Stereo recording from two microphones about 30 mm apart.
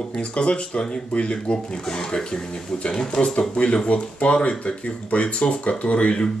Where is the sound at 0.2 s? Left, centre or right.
Left.